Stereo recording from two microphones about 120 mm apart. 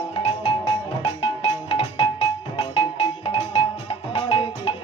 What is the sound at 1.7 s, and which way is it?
Music, 45° left (ahead or behind).